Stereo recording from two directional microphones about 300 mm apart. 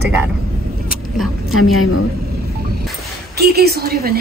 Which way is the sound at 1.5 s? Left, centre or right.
Left.